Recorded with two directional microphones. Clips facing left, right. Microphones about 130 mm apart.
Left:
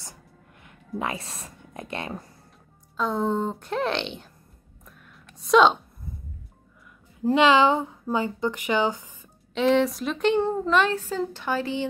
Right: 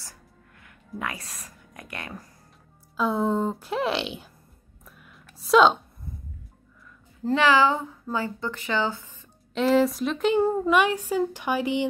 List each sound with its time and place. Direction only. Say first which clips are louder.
0.0 s a sound: left 3 dB; 20° left (ahead or behind)
3.0 s speech: right 1 dB; centre (ahead or behind)
5.4 s speech: even; centre (ahead or behind)
7.2 s speech: left 2 dB; 20° left (ahead or behind)
9.5 s speech: even; centre (ahead or behind)